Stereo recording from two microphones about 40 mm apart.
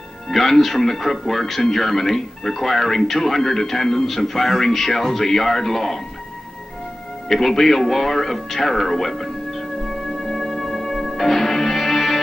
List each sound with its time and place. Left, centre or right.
0.3 s speech: centre
7.2 s music: centre